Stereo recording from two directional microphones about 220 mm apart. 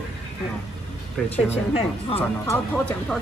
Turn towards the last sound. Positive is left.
turn(degrees=5)  # may be behind; listen again after turning